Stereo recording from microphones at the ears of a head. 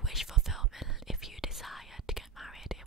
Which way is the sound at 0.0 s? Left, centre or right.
Centre.